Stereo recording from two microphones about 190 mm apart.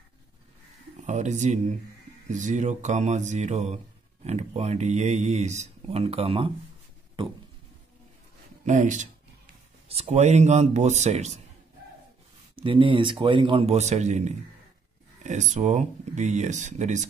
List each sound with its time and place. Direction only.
1.0 s speech: 40° right (ahead or behind)
7.2 s a sound: 25° right (ahead or behind)
8.6 s speech: 40° right (ahead or behind)
12.5 s a man's voice: 25° right (ahead or behind)